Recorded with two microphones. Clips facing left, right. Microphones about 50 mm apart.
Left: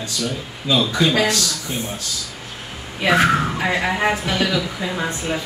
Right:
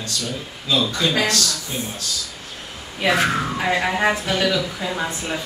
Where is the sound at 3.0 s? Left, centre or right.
Centre.